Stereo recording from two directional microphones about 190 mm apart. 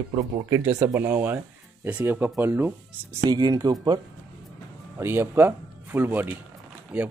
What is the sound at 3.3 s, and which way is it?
Speech, 20° right (ahead or behind).